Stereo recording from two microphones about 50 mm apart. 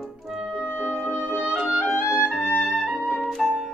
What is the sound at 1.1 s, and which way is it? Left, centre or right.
Music, right.